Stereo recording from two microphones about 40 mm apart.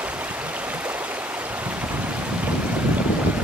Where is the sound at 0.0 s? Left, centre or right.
Right.